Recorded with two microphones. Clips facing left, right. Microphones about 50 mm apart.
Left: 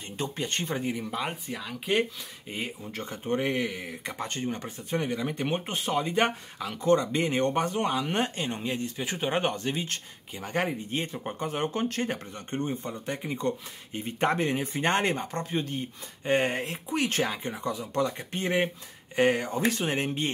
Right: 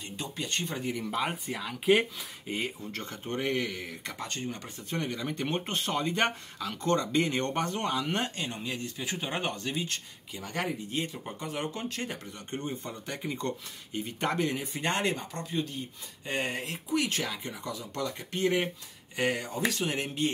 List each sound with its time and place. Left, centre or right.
0.2 s speech: left
1.1 s speech: centre
2.8 s speech: centre
13.9 s speech: left